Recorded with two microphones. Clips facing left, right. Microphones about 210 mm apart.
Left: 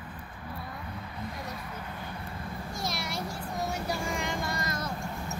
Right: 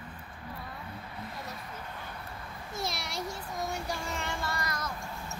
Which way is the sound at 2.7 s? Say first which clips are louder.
Even; centre (ahead or behind).